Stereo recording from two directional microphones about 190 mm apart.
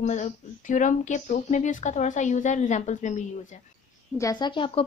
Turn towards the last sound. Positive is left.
turn(degrees=25)  # may be behind; listen again after turning